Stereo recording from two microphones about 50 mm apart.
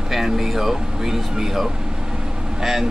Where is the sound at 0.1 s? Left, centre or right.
Centre.